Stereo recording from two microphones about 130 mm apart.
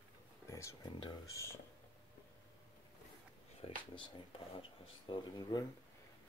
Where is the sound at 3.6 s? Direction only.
50° left (ahead or behind).